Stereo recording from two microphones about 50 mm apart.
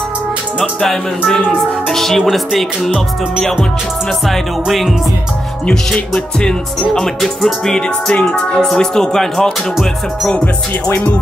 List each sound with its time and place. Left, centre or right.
0.6 s speech: centre
4.3 s speech: centre
6.1 s speech: centre
8.1 s speech: left
8.5 s speech: centre